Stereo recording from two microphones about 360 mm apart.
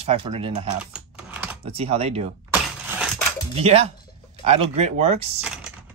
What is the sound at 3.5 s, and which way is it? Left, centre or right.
Speech, centre.